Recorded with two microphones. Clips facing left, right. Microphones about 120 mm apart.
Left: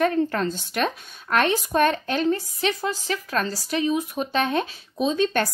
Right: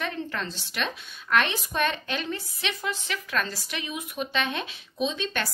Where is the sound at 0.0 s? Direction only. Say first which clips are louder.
Left 10 dB; 45° left (ahead or behind).